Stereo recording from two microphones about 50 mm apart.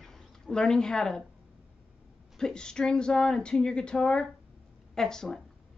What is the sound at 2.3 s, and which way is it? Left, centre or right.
A woman's voice, centre.